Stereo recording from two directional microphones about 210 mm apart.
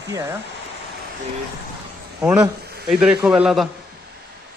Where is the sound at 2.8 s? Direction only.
Centre (ahead or behind).